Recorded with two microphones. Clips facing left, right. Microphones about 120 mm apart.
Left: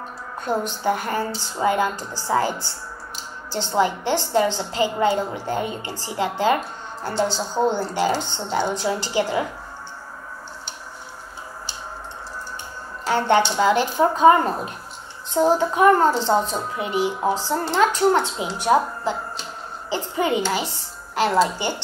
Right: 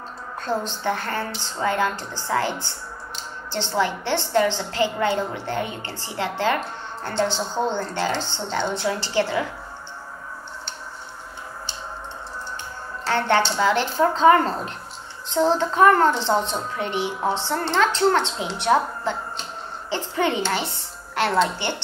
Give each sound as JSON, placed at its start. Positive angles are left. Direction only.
{"t": 0.4, "sound": "speech", "side_deg": 10}
{"t": 3.7, "sound": "a woman's voice", "side_deg": 15}
{"t": 13.0, "sound": "a woman's voice", "side_deg": 15}